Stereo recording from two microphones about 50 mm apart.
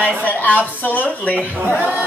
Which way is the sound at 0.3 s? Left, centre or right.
Left.